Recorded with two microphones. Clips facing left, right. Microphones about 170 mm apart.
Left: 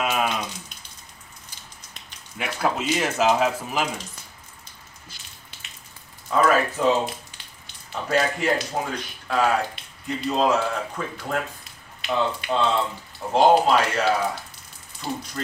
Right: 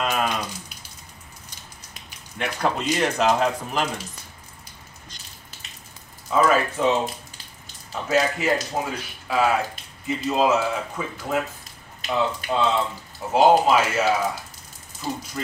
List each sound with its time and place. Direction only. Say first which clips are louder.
0.0 s a sound: even; 5° left (ahead or behind)
0.3 s a sound: even; 5° right (ahead or behind)
2.3 s speech: even; 5° left (ahead or behind)
6.3 s speech: even; centre (ahead or behind)
12.0 s speech: even; 40° right (ahead or behind)
12.4 s speech: even; 5° right (ahead or behind)
15.4 s speech: even; 5° right (ahead or behind)